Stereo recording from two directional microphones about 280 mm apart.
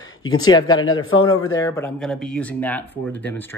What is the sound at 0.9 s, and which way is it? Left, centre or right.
Speech, left.